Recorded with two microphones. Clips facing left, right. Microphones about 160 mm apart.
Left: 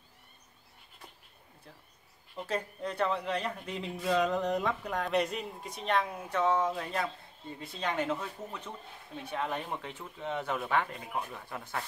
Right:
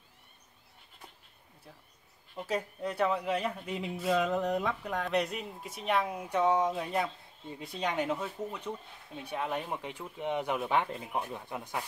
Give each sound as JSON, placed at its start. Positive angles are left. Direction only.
{"t": 2.3, "sound": "speech", "side_deg": -5}